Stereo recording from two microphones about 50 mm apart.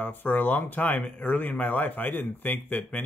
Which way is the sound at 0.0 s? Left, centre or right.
Left.